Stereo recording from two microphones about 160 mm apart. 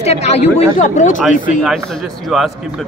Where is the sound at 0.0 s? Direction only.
40° left (ahead or behind).